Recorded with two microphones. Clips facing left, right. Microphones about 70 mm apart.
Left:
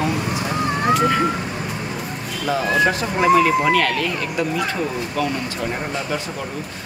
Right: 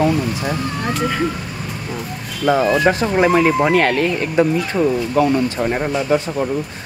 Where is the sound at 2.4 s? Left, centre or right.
Right.